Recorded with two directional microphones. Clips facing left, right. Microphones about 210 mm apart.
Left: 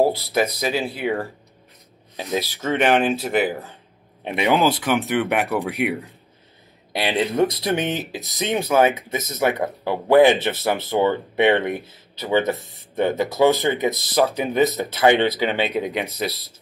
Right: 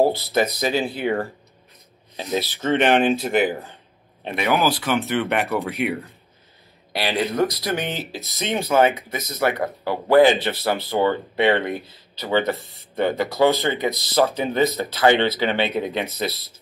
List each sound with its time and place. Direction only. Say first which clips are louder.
0.3 s speech: right 1 dB; 5° left (ahead or behind)
4.2 s speech: left 2 dB; 15° left (ahead or behind)
9.1 s speech: left 1 dB; 25° left (ahead or behind)